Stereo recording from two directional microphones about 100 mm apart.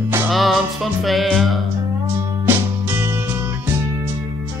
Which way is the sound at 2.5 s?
20° right (ahead or behind).